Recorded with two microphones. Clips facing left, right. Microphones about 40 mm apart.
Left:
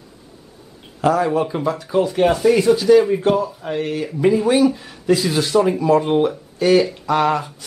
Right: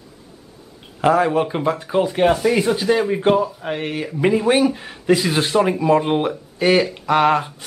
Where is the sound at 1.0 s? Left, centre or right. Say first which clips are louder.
Right 1 dB; right.